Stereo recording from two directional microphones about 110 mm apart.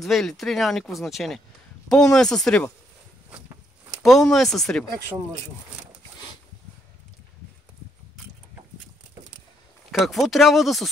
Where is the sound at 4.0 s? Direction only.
Centre (ahead or behind).